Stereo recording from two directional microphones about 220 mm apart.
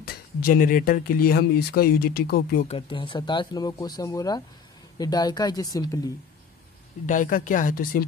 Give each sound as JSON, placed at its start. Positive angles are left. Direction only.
{"t": 0.0, "sound": "speech", "side_deg": 45}
{"t": 2.7, "sound": "speech", "side_deg": 25}
{"t": 7.1, "sound": "speech", "side_deg": 35}